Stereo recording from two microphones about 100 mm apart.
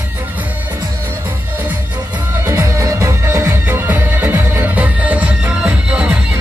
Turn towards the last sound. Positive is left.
turn(degrees=-20)  # may be behind; listen again after turning